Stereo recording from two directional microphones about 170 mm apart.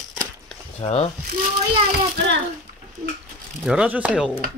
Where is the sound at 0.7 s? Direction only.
35° left (ahead or behind).